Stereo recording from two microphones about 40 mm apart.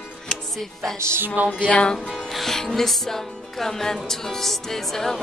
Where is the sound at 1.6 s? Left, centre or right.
Left.